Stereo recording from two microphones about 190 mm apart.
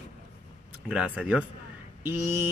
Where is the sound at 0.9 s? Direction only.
5° right (ahead or behind).